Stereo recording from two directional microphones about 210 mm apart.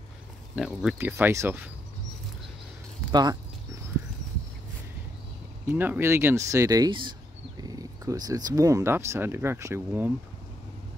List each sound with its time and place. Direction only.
0.6 s speech: centre (ahead or behind)
3.1 s speech: 20° right (ahead or behind)
5.7 s speech: 10° right (ahead or behind)